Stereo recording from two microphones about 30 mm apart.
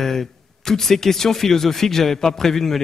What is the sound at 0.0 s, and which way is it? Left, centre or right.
Speech, centre.